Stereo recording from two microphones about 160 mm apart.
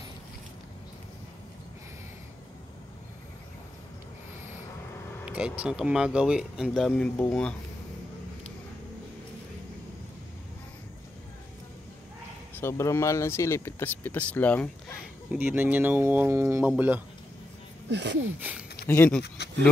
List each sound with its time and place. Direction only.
5.2 s speech: 5° right (ahead or behind)
6.9 s speech: 15° left (ahead or behind)
12.5 s speech: 15° left (ahead or behind)
15.0 s speech: 10° right (ahead or behind)
17.8 s speech: 90° right
18.9 s speech: 10° left (ahead or behind)
19.2 s speech: 90° left